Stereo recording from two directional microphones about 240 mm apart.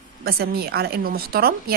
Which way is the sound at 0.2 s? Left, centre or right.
Right.